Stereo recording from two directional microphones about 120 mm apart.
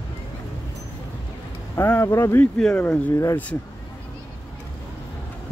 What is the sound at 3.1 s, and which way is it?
Speech, 25° left (ahead or behind).